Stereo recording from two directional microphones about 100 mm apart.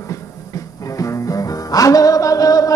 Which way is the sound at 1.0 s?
35° left (ahead or behind).